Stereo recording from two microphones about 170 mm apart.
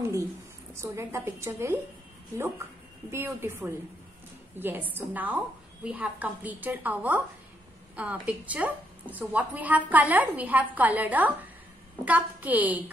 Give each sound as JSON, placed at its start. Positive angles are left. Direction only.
{"t": 0.7, "sound": "a woman's voice", "side_deg": -15}
{"t": 3.1, "sound": "a woman's voice", "side_deg": -15}